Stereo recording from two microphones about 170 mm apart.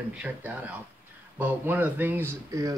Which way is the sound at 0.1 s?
10° right (ahead or behind).